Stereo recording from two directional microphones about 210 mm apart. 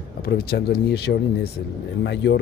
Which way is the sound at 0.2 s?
45° left (ahead or behind).